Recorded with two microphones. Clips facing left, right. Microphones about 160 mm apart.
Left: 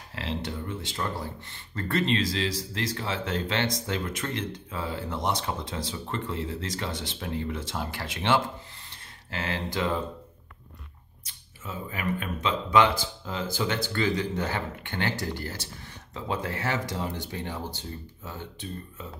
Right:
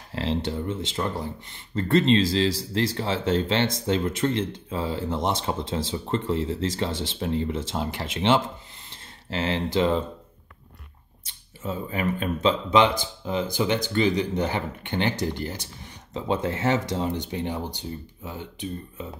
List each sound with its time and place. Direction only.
0.1 s speech: 30° right (ahead or behind)
11.2 s speech: 30° right (ahead or behind)